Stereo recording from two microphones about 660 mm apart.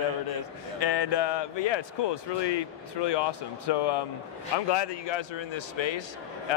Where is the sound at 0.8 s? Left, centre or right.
Left.